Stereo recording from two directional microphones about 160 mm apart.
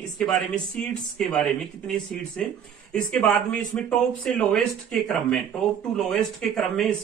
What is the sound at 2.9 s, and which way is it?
A man's voice, 5° left (ahead or behind).